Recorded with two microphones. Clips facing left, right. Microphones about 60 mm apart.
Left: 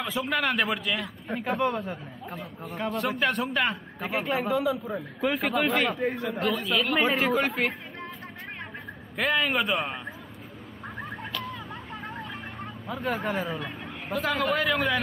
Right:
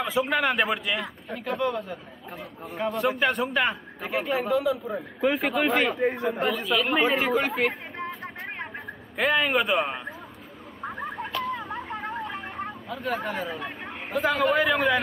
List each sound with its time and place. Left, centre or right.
0.0 s a man's voice: centre
8.7 s a man's voice: centre
10.8 s bird: centre
11.4 s a sound: right
12.2 s vehicle: right
12.8 s a man's voice: centre